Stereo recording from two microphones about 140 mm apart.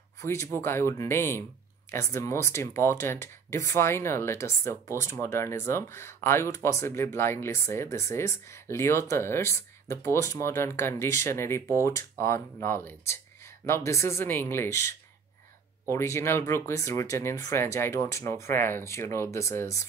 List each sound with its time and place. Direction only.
0.2 s speech: 20° left (ahead or behind)